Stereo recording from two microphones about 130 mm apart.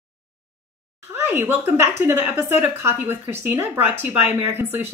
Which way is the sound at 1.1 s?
15° right (ahead or behind).